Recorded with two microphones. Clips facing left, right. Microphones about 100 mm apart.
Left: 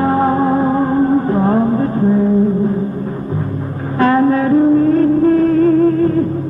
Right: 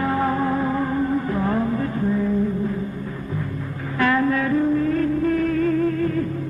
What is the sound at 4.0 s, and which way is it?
Music, 35° left (ahead or behind).